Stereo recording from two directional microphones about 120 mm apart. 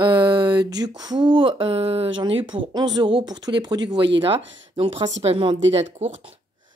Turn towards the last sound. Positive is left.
turn(degrees=-65)  # may be behind; listen again after turning